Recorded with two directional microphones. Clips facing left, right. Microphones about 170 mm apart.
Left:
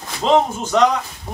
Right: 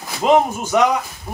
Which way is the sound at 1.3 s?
20° left (ahead or behind).